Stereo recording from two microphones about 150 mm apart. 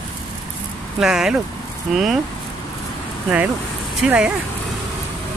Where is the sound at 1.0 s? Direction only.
5° right (ahead or behind).